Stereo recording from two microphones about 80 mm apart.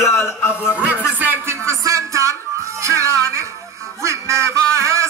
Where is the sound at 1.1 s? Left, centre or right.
Right.